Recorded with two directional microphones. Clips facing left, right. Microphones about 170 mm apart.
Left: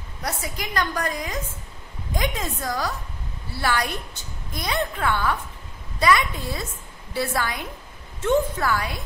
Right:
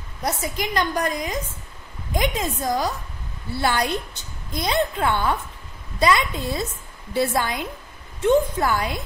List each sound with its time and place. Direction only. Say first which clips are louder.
0.2 s a woman's voice: right 5 dB; 20° right (ahead or behind)